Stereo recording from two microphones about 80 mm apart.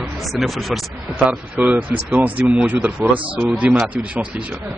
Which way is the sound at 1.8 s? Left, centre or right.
Right.